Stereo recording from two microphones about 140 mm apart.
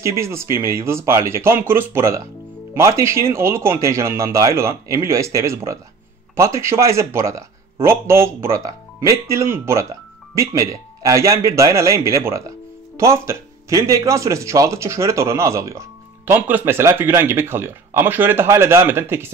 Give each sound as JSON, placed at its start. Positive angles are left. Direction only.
{"t": 0.0, "sound": "speech", "side_deg": -20}